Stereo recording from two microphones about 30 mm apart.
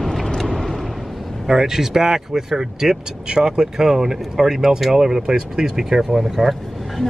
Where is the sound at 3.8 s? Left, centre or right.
Centre.